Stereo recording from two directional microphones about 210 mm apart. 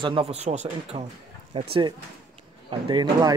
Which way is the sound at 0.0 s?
25° right (ahead or behind).